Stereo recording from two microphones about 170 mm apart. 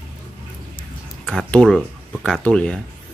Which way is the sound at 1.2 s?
5° left (ahead or behind).